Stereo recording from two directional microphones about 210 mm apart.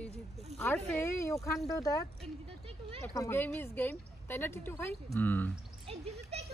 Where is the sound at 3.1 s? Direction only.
15° left (ahead or behind).